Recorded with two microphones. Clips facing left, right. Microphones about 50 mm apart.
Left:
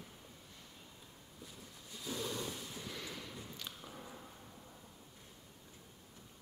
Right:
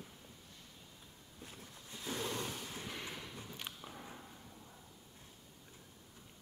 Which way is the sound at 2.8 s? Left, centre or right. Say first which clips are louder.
Right 1 dB; right.